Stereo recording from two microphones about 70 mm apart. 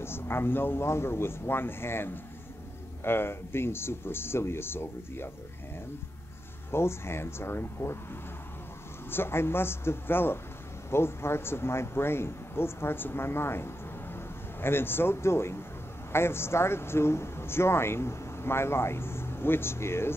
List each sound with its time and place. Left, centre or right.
0.0 s a man's voice: left
6.7 s a man's voice: left